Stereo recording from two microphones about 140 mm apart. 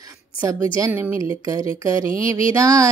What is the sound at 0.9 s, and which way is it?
Speech, 15° right (ahead or behind).